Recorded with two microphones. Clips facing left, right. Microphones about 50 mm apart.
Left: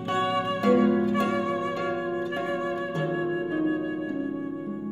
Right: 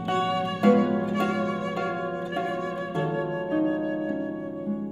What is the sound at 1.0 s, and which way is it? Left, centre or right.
Music, centre.